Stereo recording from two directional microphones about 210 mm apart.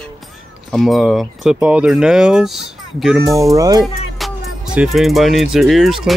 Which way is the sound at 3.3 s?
15° right (ahead or behind).